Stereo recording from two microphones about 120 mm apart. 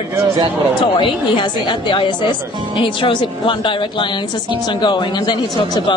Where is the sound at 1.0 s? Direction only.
40° left (ahead or behind).